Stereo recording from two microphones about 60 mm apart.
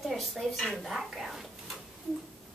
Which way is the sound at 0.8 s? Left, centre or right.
Centre.